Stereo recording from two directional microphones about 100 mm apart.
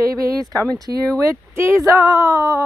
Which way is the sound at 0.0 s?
35° right (ahead or behind).